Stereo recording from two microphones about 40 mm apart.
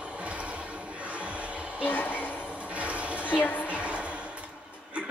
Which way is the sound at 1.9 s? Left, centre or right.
Left.